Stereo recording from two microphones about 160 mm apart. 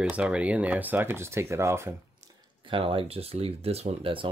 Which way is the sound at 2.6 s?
35° right (ahead or behind).